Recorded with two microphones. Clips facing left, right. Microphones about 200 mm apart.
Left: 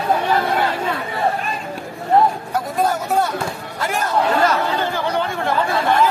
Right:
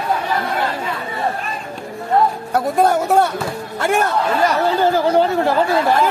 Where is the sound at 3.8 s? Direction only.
60° right (ahead or behind).